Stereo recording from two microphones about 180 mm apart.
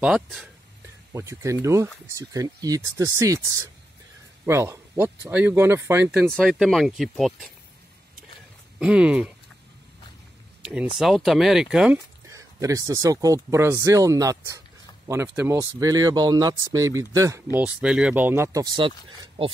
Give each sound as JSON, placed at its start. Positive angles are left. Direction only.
{"t": 0.0, "sound": "speech", "side_deg": -5}
{"t": 1.1, "sound": "speech", "side_deg": -15}
{"t": 6.3, "sound": "speech", "side_deg": 0}
{"t": 8.7, "sound": "speech", "side_deg": -5}
{"t": 10.6, "sound": "a sound", "side_deg": -5}
{"t": 11.0, "sound": "speech", "side_deg": 0}
{"t": 12.3, "sound": "speech", "side_deg": -15}